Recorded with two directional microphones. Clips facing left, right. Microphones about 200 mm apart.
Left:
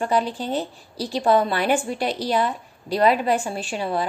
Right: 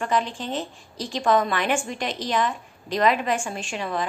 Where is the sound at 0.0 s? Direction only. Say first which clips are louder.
Left 3 dB; 35° left (ahead or behind).